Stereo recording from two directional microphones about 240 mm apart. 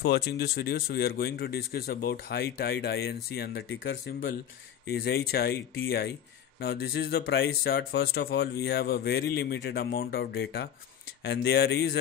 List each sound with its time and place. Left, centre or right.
0.0 s speech: left